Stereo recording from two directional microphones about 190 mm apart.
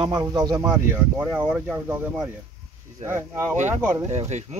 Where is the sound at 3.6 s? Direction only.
10° right (ahead or behind).